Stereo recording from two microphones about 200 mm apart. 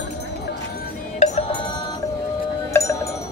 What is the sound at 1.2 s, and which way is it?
Music, 35° left (ahead or behind).